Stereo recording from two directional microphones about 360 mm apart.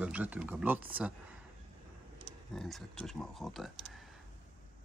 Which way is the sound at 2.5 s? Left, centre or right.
Centre.